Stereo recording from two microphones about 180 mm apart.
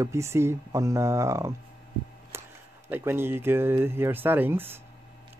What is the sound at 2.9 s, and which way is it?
Speech, 10° right (ahead or behind).